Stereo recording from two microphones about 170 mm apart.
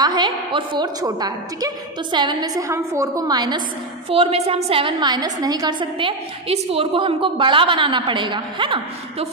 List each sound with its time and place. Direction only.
0.0 s a woman's voice: 25° right (ahead or behind)
4.1 s a woman's voice: 35° right (ahead or behind)